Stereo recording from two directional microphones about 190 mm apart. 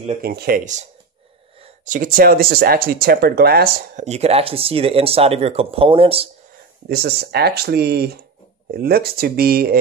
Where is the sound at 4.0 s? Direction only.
35° right (ahead or behind).